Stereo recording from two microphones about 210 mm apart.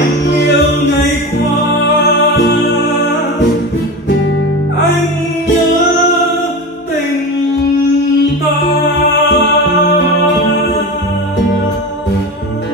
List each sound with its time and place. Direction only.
0.4 s music: 55° left (ahead or behind)
9.3 s music: 55° left (ahead or behind)